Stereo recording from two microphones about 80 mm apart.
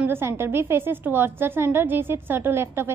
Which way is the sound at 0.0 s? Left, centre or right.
Right.